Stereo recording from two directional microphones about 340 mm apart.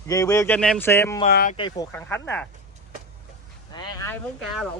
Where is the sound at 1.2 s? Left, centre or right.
Left.